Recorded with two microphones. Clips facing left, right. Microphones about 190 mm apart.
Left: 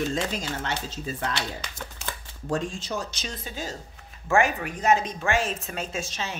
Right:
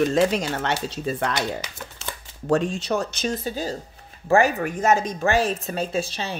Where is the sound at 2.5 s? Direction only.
65° right (ahead or behind).